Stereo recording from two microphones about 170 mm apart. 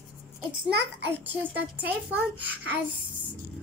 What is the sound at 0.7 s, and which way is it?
Speech, 75° right (ahead or behind).